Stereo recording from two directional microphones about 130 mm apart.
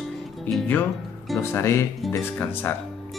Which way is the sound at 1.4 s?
20° left (ahead or behind).